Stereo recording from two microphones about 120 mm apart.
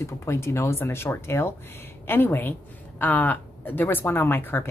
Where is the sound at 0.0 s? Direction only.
25° left (ahead or behind).